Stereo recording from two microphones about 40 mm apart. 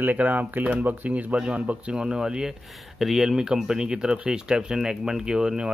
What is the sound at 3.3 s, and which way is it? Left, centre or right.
Speech, right.